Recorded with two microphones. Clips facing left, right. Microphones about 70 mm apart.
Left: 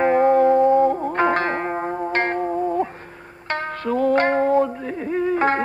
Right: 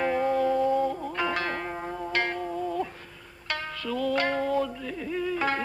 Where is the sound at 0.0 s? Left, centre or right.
Left.